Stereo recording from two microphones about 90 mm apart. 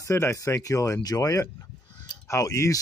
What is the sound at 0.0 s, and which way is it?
Speech, 30° left (ahead or behind).